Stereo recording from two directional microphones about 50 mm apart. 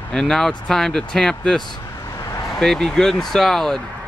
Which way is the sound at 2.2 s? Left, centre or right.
Left.